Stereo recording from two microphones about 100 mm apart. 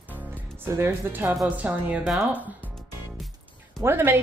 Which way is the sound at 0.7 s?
25° right (ahead or behind).